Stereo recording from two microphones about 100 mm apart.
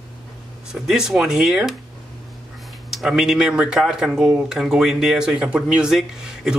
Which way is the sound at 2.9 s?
5° right (ahead or behind).